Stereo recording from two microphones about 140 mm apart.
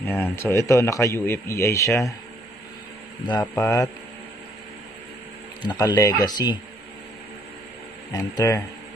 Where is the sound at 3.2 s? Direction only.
30° left (ahead or behind).